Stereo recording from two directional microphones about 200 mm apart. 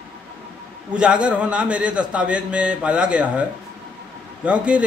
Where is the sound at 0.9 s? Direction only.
5° right (ahead or behind).